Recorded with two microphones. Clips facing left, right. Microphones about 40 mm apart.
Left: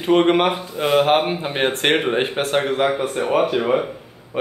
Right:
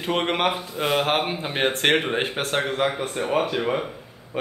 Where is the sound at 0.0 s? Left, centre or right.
Centre.